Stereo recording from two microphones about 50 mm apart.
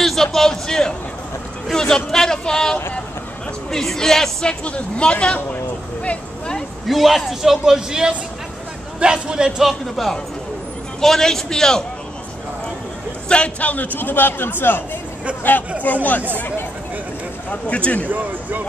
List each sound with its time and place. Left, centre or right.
0.0 s a sound: centre
3.7 s a man's voice: centre
4.5 s speech: left
6.0 s a sound: centre
6.9 s a man's voice: centre
9.6 s a man's voice: centre
13.3 s a man's voice: left
15.8 s a man's voice: left
16.3 s speech: left
17.5 s speech: left
18.0 s speech: right